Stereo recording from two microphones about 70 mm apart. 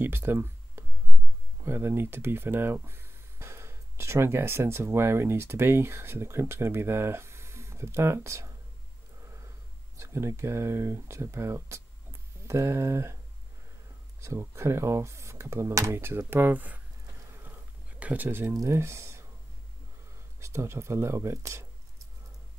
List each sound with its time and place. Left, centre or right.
0.0 s a sound: right
1.6 s speech: right
9.2 s a sound: right
9.9 s speech: right
14.2 s speech: right
17.3 s a sound: right
17.9 s speech: right
18.5 s speech: right
20.3 s speech: right